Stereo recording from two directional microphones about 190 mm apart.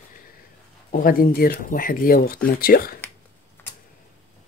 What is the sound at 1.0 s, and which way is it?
Speech, 50° left (ahead or behind).